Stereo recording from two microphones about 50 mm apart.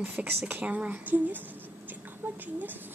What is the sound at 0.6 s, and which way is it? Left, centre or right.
Speech, right.